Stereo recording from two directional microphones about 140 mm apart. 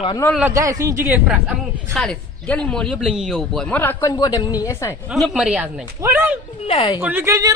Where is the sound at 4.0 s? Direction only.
25° left (ahead or behind).